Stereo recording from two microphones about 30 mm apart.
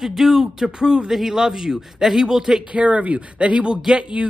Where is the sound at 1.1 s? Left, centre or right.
Centre.